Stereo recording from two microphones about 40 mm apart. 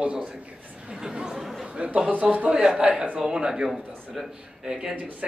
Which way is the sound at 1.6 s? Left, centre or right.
Right.